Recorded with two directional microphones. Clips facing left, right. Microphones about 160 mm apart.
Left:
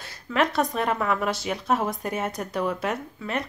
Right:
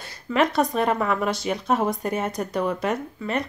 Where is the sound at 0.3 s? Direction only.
Centre (ahead or behind).